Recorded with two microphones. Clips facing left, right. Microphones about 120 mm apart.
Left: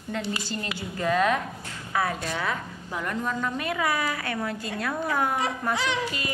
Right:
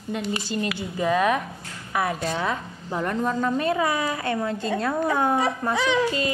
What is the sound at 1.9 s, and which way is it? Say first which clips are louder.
A woman's voice: right 2 dB; 15° right (ahead or behind).